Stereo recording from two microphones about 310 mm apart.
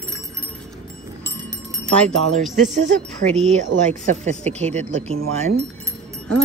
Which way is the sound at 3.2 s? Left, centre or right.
Right.